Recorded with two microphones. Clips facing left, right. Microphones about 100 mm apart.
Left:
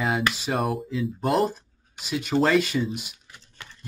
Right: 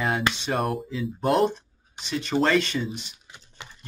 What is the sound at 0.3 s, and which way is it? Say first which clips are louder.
Speech: even; 5° left (ahead or behind).